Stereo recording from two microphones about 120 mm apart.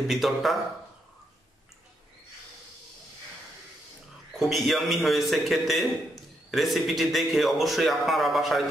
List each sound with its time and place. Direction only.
0.1 s a man's voice: centre (ahead or behind)
4.4 s a man's voice: centre (ahead or behind)